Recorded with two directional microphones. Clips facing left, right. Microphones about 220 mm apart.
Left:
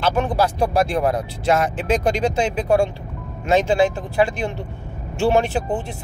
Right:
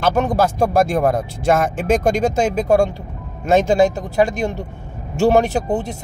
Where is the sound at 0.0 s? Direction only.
45° right (ahead or behind).